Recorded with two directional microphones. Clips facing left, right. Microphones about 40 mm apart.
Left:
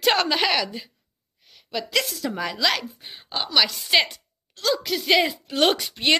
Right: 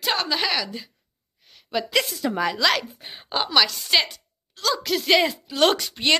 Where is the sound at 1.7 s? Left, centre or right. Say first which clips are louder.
Right 2 dB; centre.